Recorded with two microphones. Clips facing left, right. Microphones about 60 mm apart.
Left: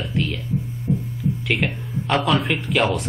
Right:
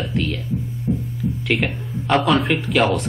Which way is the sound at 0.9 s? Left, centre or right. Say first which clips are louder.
Even; right.